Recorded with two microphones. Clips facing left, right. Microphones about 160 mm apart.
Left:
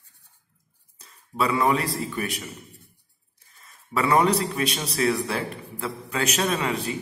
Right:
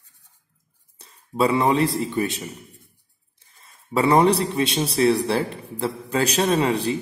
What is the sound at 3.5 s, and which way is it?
A man's voice, 30° right (ahead or behind).